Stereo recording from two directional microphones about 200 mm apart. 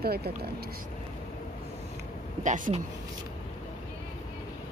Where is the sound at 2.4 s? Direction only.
40° right (ahead or behind).